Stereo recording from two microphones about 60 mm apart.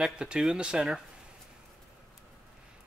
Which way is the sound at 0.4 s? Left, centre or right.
Centre.